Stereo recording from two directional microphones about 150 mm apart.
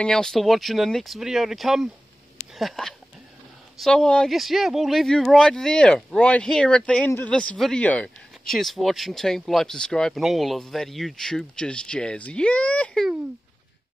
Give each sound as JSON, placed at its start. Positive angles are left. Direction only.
{"t": 0.0, "sound": "speech", "side_deg": 5}